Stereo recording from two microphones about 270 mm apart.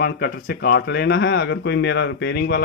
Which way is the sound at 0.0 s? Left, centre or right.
Left.